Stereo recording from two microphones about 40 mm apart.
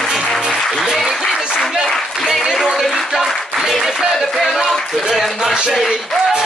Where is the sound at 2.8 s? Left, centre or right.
Centre.